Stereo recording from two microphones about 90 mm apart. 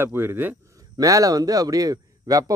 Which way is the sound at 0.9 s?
40° right (ahead or behind).